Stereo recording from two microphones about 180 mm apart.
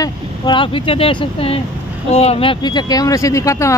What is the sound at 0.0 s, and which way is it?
Speech, 25° left (ahead or behind).